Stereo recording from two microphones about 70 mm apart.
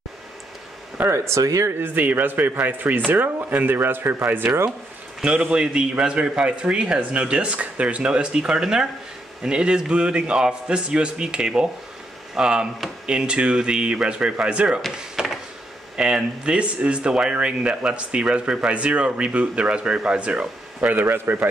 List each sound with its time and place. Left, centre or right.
0.9 s speech: right
1.8 s speech: right
5.2 s speech: centre
14.9 s a sound: centre
16.0 s speech: centre; by 21.5 s right